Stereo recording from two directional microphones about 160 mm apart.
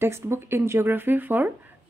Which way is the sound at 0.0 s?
15° right (ahead or behind).